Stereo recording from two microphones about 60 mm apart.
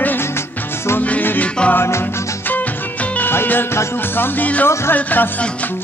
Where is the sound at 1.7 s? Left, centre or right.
Left.